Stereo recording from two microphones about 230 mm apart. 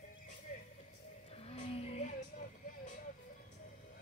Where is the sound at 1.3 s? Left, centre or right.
Left.